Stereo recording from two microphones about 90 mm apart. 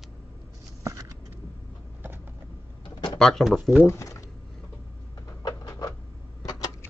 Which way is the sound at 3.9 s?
35° left (ahead or behind).